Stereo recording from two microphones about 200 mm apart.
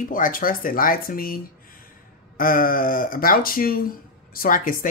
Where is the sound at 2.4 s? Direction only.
45° left (ahead or behind).